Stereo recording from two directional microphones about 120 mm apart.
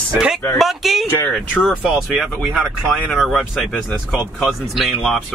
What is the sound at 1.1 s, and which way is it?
Speech, 20° left (ahead or behind).